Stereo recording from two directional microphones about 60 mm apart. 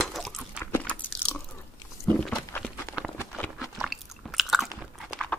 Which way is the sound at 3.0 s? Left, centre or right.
Right.